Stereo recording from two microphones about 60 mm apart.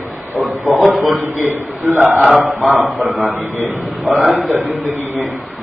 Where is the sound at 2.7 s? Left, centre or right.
Right.